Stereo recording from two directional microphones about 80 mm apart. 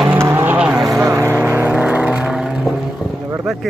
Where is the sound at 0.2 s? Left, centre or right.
Right.